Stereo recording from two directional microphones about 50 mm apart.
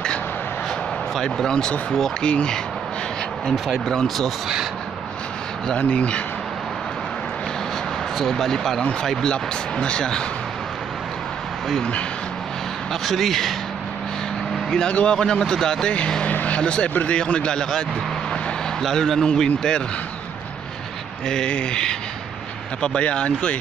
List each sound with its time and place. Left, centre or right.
1.2 s speech: centre
3.7 s speech: centre
5.8 s speech: left
8.2 s a man's voice: centre
9.3 s speech: centre
13.0 s a man's voice: centre
14.7 s speech: centre
16.3 s vehicle: left
17.1 s speech: left
18.3 s a sound: centre
19.2 s speech: centre
21.5 s speech: centre